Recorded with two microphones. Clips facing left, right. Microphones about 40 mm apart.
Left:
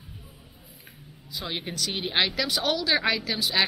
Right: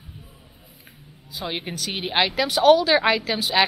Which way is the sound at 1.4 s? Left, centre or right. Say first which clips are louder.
Right 3 dB; right.